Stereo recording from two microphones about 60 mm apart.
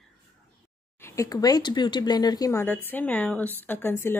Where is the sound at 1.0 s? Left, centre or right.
Left.